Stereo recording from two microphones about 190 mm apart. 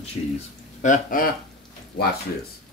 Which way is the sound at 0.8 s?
45° left (ahead or behind).